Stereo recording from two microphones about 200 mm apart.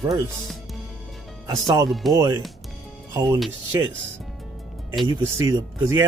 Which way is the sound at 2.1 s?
20° right (ahead or behind).